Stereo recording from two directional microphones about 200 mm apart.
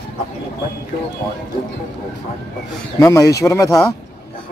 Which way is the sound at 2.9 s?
15° left (ahead or behind).